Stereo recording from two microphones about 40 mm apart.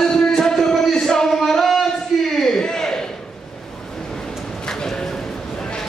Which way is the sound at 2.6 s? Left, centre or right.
Centre.